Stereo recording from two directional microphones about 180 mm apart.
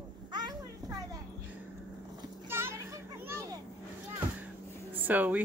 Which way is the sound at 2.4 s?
15° right (ahead or behind).